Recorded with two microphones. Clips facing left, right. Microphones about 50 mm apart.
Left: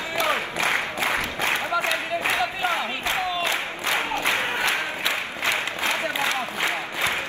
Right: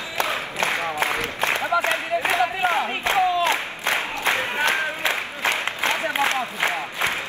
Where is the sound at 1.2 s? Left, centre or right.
Right.